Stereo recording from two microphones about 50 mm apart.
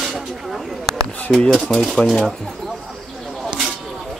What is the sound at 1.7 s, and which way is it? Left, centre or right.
Speech, centre.